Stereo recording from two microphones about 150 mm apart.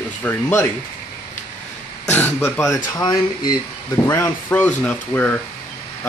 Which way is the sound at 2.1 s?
15° left (ahead or behind).